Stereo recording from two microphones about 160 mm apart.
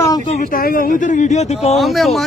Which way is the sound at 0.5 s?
60° left (ahead or behind).